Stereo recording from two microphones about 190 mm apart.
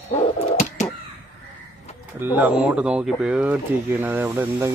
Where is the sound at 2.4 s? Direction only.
5° right (ahead or behind).